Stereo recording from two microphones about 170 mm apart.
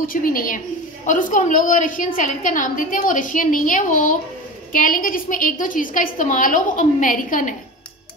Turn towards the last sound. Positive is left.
turn(degrees=50)  # may be behind; listen again after turning